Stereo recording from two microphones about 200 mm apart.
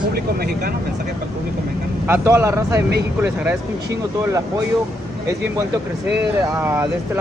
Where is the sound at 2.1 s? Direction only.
10° right (ahead or behind).